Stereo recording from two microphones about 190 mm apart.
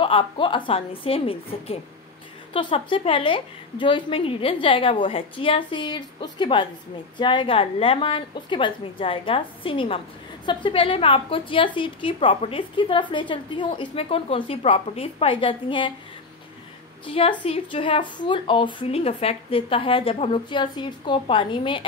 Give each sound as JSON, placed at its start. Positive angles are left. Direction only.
{"t": 0.0, "sound": "a woman's voice", "side_deg": 25}
{"t": 17.0, "sound": "a woman's voice", "side_deg": 30}